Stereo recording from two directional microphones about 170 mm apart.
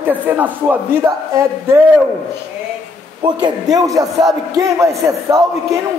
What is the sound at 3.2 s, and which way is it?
A man's voice, 25° right (ahead or behind).